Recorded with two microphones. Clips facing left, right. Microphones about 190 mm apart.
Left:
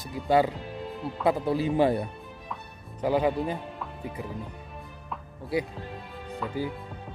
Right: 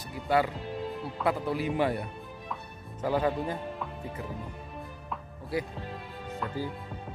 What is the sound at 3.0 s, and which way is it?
Speech, 15° left (ahead or behind).